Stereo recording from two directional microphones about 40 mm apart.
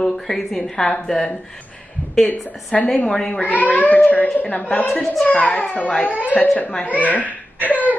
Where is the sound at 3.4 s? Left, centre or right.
Left.